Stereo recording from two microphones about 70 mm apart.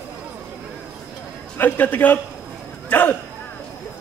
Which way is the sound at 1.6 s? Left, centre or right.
Left.